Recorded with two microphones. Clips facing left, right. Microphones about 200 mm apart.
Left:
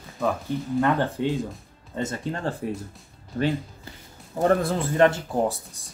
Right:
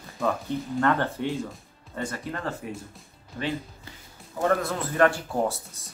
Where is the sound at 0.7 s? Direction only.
15° left (ahead or behind).